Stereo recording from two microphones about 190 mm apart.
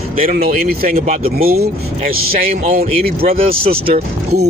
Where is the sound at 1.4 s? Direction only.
50° right (ahead or behind).